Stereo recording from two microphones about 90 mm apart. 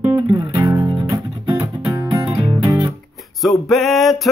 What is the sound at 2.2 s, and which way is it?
Music, 55° right (ahead or behind).